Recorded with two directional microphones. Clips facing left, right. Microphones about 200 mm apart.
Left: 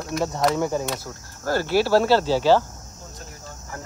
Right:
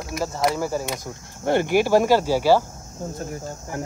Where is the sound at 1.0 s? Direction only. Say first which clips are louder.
Right 4 dB; 20° right (ahead or behind).